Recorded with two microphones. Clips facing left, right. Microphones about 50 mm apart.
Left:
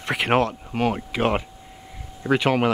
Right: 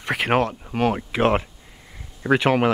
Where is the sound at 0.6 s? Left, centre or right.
Centre.